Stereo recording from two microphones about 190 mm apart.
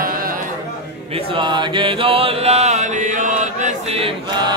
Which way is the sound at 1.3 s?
25° right (ahead or behind).